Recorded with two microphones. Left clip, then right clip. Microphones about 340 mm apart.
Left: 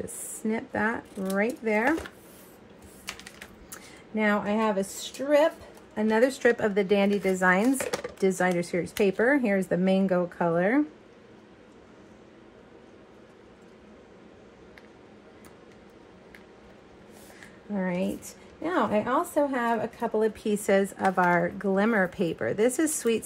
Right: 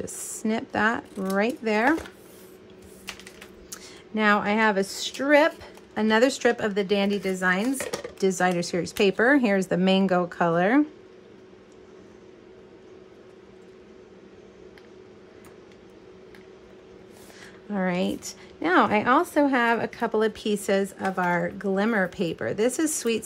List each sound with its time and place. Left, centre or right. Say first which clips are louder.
0.5 s speech: right 4 dB; centre
3.7 s a woman's voice: right 2 dB; centre
6.2 s a woman's voice: right 1 dB; centre
17.7 s a sound: right 3 dB; centre
18.6 s a woman's voice: right 5 dB; centre
20.4 s a woman's voice: even; centre